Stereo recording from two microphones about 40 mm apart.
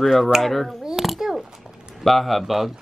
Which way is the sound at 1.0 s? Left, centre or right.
Centre.